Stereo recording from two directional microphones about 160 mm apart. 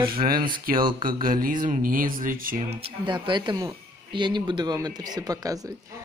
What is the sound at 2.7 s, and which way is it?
Speech, 35° right (ahead or behind).